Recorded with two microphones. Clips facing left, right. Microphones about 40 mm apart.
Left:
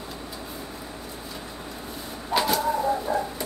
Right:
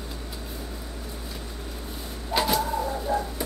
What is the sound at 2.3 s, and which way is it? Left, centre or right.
Bird, centre.